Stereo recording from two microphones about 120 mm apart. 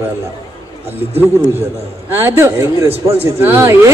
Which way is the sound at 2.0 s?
20° right (ahead or behind).